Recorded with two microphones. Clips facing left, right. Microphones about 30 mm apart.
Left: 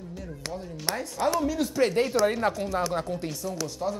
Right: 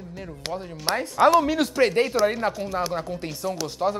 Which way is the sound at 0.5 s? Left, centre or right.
Right.